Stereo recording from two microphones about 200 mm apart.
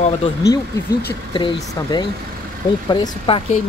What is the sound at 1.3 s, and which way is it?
Speech, 20° left (ahead or behind).